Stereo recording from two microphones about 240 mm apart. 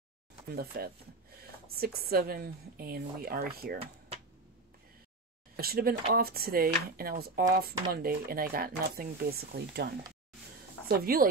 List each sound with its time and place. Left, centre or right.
0.6 s speech: right
5.6 s speech: right
10.9 s speech: right